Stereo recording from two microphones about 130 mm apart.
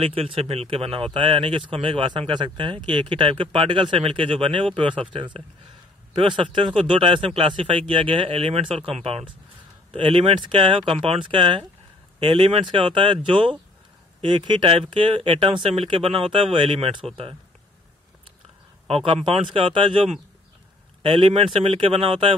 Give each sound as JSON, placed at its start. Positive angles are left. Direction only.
{"t": 0.0, "sound": "speech", "side_deg": -45}
{"t": 18.9, "sound": "speech", "side_deg": -50}